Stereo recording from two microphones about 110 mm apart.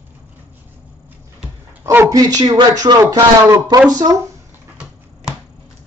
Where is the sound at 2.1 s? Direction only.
35° right (ahead or behind).